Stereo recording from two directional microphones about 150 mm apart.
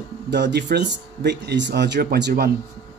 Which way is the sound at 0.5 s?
90° right.